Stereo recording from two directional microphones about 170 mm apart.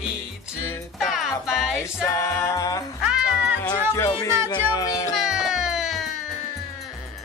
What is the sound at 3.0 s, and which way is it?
Music, 5° right (ahead or behind).